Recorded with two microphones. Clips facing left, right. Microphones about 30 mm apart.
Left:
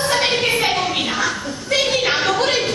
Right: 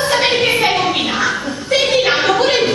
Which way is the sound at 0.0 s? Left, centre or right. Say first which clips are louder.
Right 4 dB; centre.